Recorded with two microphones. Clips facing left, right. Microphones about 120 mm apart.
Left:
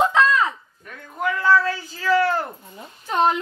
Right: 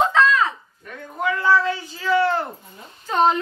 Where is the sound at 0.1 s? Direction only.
15° left (ahead or behind).